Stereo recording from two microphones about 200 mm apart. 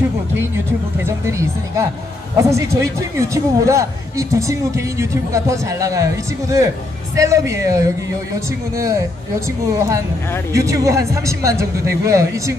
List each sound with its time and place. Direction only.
1.0 s speech: 15° right (ahead or behind)